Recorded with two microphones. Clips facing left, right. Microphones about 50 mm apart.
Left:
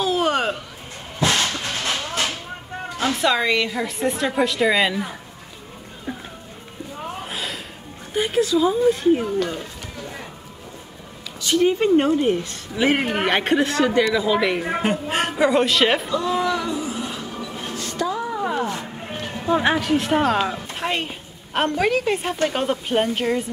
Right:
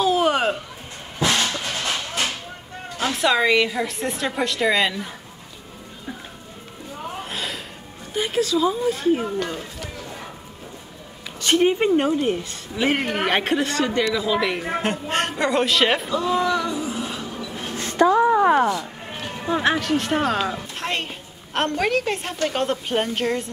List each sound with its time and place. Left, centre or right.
0.0 s a sound: centre
3.0 s a woman's voice: centre
7.2 s gasp: centre
8.1 s a woman's voice: centre
9.1 s a woman's voice: centre
11.3 s a sound: right
12.0 s a woman's voice: centre
17.3 s a sound: centre
17.7 s music: right
19.6 s a woman's voice: centre